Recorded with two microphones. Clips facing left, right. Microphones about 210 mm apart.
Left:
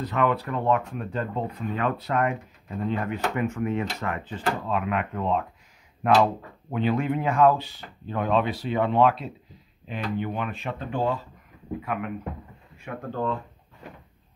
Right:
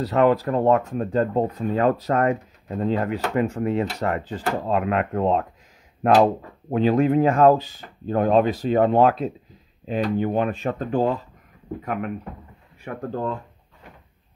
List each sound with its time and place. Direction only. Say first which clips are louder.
0.0 s speech: right 6 dB; 40° right (ahead or behind)